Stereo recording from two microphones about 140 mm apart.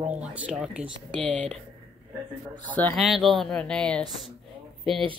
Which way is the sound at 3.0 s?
Centre (ahead or behind).